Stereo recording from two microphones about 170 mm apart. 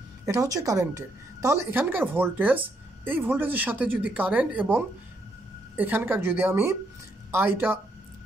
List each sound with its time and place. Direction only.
0.2 s a woman's voice: 20° right (ahead or behind)